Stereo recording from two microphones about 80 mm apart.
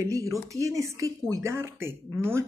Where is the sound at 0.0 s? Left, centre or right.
Right.